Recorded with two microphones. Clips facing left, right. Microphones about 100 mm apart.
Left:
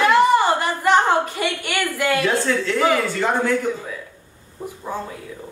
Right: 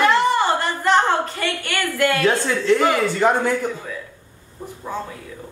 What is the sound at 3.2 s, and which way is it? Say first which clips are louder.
Speech: right 7 dB; 25° right (ahead or behind).